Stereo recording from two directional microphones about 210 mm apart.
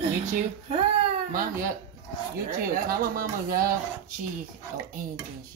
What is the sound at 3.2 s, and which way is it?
Speech, 45° right (ahead or behind).